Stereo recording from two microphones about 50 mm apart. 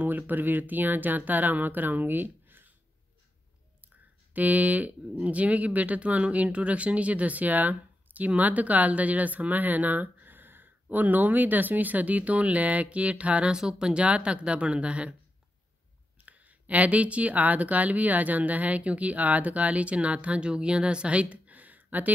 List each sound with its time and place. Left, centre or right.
0.0 s speech: right
4.3 s speech: right
16.3 s speech: right